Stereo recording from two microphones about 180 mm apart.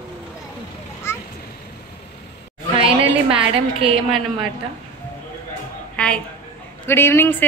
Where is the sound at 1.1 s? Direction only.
15° left (ahead or behind).